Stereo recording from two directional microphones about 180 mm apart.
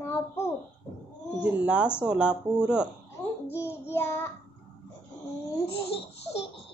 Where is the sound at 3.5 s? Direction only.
15° left (ahead or behind).